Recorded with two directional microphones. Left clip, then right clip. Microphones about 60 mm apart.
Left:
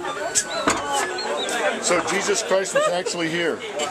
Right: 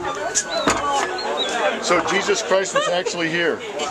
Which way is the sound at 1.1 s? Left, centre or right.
Left.